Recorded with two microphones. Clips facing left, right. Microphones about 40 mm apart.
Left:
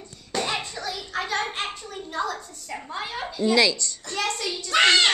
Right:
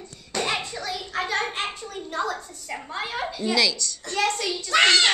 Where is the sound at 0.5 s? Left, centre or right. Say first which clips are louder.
Right 1 dB; centre.